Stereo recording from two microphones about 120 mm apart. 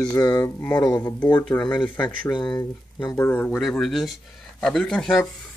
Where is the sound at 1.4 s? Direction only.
10° left (ahead or behind).